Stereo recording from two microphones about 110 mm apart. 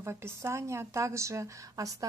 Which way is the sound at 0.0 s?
25° right (ahead or behind).